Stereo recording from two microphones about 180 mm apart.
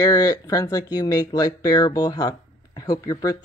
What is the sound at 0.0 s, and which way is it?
Speech, 20° left (ahead or behind).